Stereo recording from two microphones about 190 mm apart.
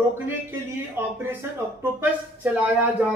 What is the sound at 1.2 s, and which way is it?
Speech, 10° right (ahead or behind).